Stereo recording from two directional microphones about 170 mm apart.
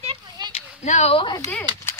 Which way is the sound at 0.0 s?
30° right (ahead or behind).